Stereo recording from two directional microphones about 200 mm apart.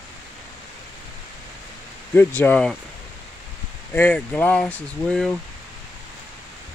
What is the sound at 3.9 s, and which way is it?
Speech, 10° left (ahead or behind).